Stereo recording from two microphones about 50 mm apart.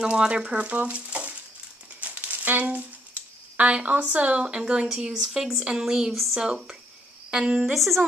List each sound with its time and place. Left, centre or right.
0.0 s speech: centre
2.0 s a sound: right
2.6 s speech: right; by 8.0 s centre